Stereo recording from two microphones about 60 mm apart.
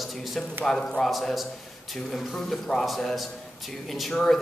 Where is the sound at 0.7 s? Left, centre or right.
Centre.